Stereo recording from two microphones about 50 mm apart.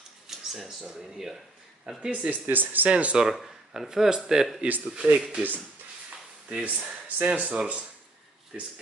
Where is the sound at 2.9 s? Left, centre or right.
Right.